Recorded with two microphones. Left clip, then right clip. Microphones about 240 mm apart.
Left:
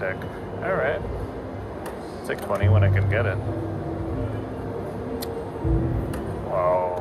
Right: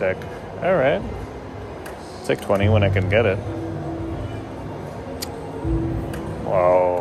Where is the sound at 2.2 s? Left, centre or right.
Right.